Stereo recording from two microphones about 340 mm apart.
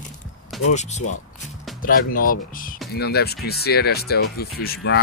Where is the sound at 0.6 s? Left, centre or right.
Centre.